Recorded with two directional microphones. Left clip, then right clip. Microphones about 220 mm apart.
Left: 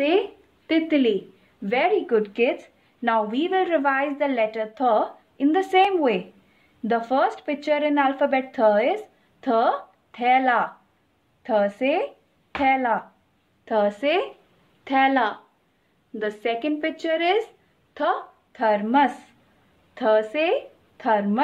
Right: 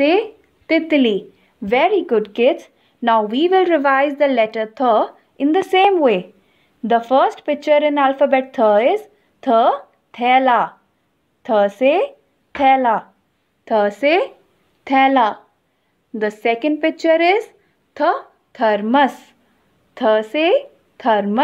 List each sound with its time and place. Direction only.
0.7 s a woman's voice: 30° right (ahead or behind)